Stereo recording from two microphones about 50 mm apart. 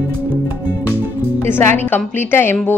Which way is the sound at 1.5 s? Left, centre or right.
Left.